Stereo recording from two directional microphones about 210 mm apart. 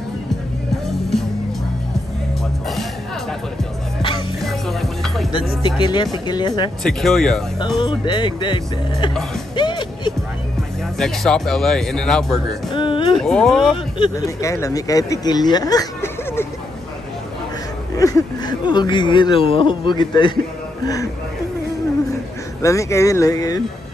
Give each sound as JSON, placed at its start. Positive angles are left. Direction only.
{"t": 4.4, "sound": "music", "side_deg": 0}
{"t": 5.6, "sound": "speech", "side_deg": 20}
{"t": 6.8, "sound": "speech", "side_deg": 0}
{"t": 7.6, "sound": "speech", "side_deg": 20}
{"t": 9.6, "sound": "music", "side_deg": 20}
{"t": 11.0, "sound": "speech", "side_deg": 5}
{"t": 12.7, "sound": "a sound", "side_deg": 25}
{"t": 13.2, "sound": "speech", "side_deg": 5}
{"t": 13.9, "sound": "speech", "side_deg": 20}
{"t": 17.9, "sound": "speech", "side_deg": 15}
{"t": 22.6, "sound": "speech", "side_deg": 15}